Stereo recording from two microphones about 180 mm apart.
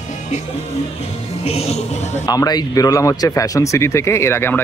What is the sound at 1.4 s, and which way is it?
Music, 35° left (ahead or behind).